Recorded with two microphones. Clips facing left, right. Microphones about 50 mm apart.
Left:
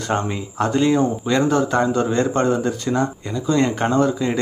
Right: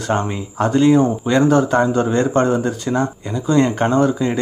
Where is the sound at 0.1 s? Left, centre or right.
Centre.